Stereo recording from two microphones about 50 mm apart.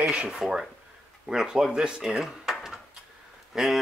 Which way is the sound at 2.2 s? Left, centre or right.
Centre.